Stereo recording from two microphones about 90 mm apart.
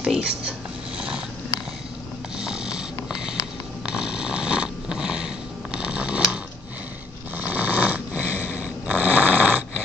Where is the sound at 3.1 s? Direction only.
10° right (ahead or behind).